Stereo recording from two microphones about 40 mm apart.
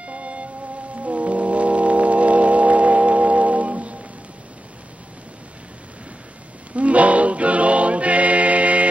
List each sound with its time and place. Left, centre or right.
0.0 s music: right
6.7 s music: right